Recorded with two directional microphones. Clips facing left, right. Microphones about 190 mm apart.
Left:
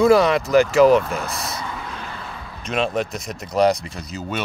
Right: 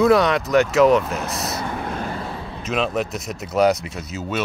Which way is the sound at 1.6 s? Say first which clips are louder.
Right 5 dB; 50° right (ahead or behind).